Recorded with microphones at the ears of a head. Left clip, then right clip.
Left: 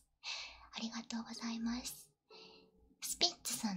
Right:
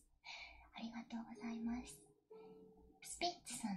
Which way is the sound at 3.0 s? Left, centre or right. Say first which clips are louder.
Left 7 dB; left.